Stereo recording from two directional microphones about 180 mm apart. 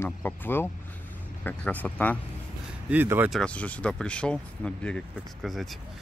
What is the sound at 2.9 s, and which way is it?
Speech, 10° right (ahead or behind).